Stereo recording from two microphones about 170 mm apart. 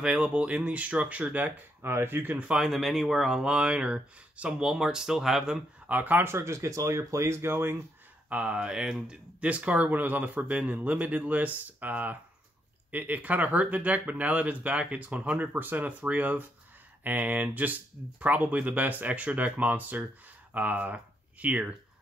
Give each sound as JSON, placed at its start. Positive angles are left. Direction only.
{"t": 0.0, "sound": "speech", "side_deg": -5}